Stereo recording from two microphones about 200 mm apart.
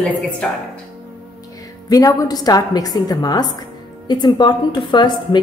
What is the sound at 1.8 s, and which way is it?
A woman's voice, 20° left (ahead or behind).